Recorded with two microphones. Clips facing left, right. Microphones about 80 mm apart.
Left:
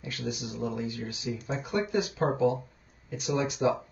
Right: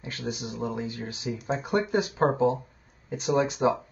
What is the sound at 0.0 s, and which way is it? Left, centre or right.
Speech, right.